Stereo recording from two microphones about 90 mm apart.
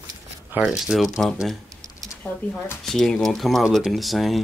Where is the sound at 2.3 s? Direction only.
15° left (ahead or behind).